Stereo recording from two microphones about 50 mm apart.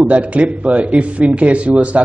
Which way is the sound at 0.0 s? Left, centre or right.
Right.